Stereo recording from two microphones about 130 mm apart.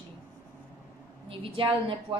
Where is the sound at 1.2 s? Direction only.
45° right (ahead or behind).